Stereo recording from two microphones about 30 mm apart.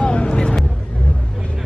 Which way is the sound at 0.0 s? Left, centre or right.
Left.